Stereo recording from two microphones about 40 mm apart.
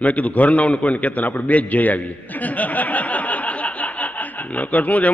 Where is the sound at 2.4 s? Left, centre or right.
Left.